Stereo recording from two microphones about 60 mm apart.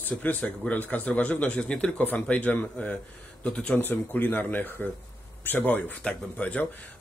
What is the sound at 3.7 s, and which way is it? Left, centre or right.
A man's voice, left.